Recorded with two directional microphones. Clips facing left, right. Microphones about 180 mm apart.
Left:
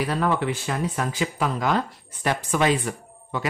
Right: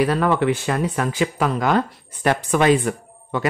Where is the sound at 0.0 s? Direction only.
70° right (ahead or behind).